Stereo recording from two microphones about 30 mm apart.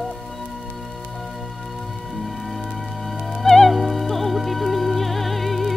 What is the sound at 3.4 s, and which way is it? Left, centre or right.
Music, centre.